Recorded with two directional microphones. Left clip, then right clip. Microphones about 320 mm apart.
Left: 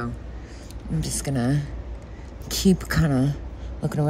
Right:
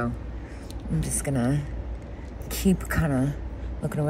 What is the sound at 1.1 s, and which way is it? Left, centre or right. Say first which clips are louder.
Speech: left 1 dB; centre.